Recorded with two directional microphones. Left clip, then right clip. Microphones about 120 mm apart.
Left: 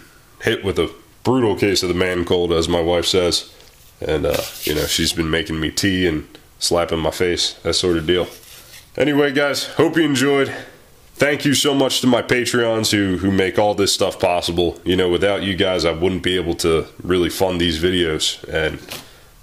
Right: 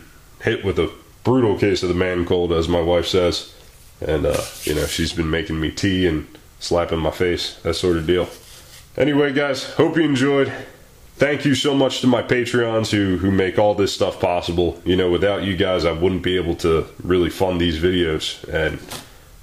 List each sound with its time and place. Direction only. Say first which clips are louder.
0.4 s a man's voice: left 1 dB; 40° left (ahead or behind)